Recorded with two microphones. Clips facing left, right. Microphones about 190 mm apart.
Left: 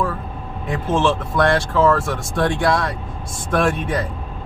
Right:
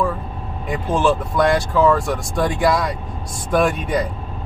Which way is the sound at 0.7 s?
Centre (ahead or behind).